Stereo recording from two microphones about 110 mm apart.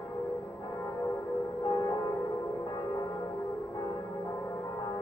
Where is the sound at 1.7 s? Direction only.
30° left (ahead or behind).